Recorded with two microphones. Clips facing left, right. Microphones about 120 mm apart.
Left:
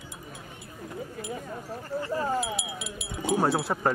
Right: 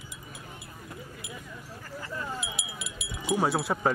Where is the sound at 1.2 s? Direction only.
50° left (ahead or behind).